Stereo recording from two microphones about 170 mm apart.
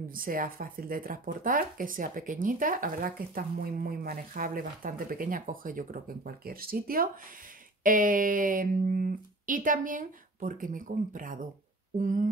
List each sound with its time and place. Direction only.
0.1 s speech: 55° right (ahead or behind)